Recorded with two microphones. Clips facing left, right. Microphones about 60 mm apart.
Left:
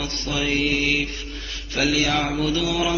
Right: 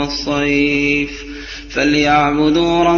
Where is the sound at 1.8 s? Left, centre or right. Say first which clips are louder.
Right 9 dB; right.